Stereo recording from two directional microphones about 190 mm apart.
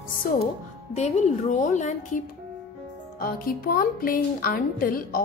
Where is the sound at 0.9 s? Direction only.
35° left (ahead or behind).